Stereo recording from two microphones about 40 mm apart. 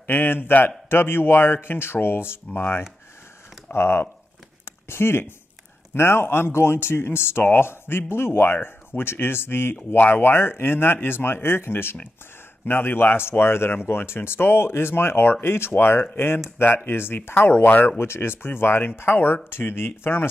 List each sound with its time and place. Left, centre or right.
0.0 s a man's voice: left
0.5 s a man's voice: left
0.8 s speech: left
3.7 s speech: left
10.1 s speech: left
13.3 s speech: left
17.3 s speech: left
17.8 s speech: left